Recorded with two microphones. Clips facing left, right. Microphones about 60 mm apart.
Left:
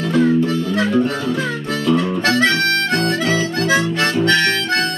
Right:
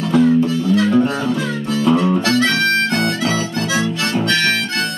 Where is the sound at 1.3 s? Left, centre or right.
Left.